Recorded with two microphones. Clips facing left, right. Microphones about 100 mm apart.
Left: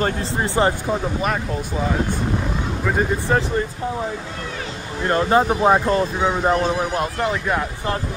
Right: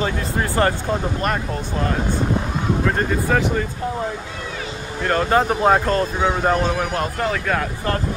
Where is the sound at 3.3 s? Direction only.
30° left (ahead or behind).